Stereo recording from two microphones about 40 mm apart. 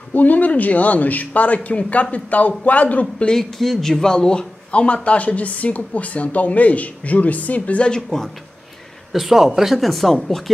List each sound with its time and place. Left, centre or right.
0.1 s speech: left
3.3 s speech: centre; by 7.9 s left
7.9 s speech: centre
9.1 s speech: centre